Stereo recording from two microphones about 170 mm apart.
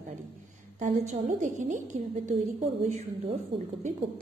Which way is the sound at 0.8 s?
45° right (ahead or behind).